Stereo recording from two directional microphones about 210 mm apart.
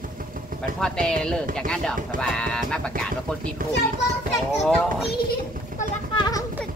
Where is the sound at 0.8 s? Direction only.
5° left (ahead or behind).